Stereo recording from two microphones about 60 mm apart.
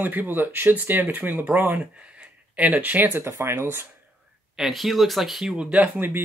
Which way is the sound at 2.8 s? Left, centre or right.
Right.